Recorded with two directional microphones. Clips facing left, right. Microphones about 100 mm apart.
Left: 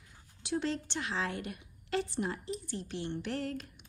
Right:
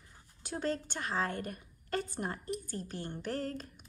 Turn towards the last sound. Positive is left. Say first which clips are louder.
# even
turn(degrees=-40)  # may be behind; listen again after turning